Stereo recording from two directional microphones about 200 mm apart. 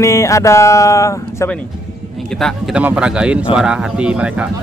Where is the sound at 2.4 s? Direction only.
Centre (ahead or behind).